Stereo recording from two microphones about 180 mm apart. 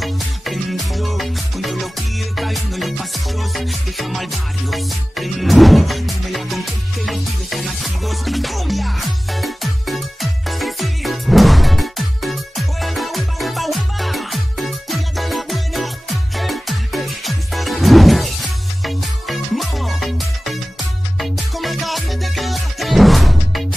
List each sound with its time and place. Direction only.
0.0 s music: centre (ahead or behind)